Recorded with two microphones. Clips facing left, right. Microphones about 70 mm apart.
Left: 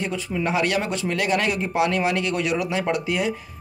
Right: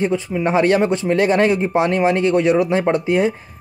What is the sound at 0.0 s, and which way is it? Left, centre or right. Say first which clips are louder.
A man's voice: right 7 dB; right.